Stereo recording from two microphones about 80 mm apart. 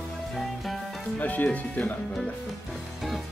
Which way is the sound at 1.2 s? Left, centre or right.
Centre.